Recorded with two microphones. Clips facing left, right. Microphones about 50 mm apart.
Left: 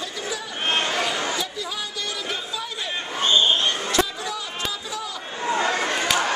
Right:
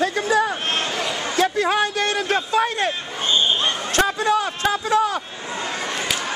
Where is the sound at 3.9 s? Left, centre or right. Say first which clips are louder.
Right 6 dB; right.